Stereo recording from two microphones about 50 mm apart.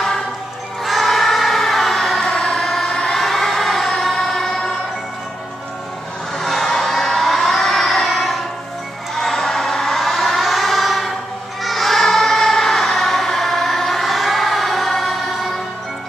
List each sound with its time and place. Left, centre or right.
0.8 s choir: centre
6.3 s a sound: centre
11.6 s choir: centre